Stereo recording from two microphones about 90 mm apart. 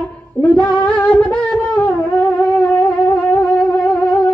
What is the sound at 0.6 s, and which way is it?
Music, 15° left (ahead or behind).